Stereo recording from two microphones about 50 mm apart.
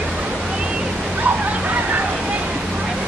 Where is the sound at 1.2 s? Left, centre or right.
Right.